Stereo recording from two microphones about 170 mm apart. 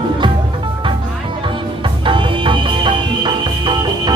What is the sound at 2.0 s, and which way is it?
Music, 30° right (ahead or behind).